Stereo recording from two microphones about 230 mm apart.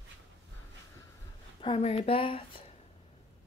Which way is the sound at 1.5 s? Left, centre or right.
Left.